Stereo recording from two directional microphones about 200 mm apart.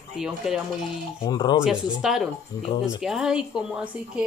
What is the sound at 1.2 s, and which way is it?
Speech, 20° left (ahead or behind).